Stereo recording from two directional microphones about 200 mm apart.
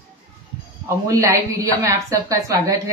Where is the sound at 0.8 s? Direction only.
15° right (ahead or behind).